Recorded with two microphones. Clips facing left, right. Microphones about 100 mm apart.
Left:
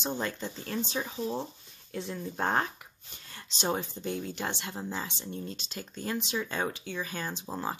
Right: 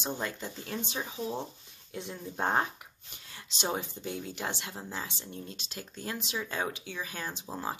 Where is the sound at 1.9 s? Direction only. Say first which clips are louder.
Left 3 dB; 20° right (ahead or behind).